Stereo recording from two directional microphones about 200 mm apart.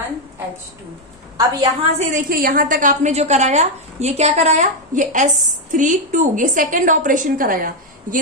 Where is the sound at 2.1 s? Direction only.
45° right (ahead or behind).